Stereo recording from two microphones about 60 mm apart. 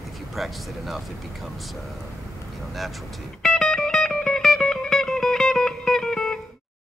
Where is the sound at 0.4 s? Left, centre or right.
Centre.